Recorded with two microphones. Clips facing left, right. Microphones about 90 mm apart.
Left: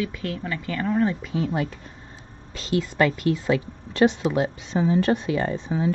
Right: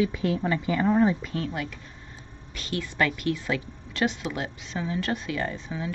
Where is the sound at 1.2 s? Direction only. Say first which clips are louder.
Left 5 dB; 5° left (ahead or behind).